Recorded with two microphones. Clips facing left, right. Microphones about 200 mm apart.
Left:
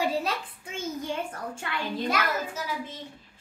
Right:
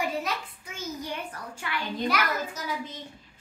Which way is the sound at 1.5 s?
25° left (ahead or behind).